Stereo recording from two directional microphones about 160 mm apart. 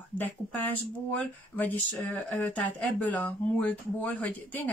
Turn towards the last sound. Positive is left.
turn(degrees=10)  # may be behind; listen again after turning